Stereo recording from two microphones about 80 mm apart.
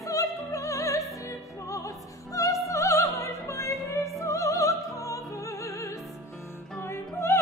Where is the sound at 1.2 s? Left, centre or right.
Left.